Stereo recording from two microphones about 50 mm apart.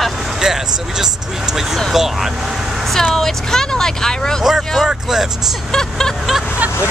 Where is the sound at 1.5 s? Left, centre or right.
Centre.